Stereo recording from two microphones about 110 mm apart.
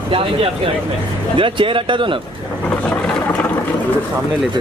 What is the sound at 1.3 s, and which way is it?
Speech, 50° right (ahead or behind).